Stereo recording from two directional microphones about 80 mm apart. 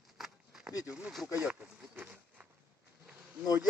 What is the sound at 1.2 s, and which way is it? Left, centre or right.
Speech, centre.